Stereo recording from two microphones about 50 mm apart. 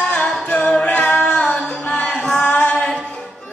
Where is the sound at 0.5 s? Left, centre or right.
Left.